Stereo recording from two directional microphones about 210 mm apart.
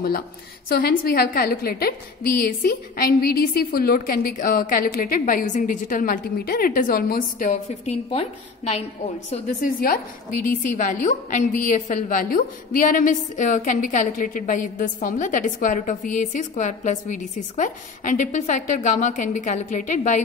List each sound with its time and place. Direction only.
0.7 s a woman's voice: 45° left (ahead or behind)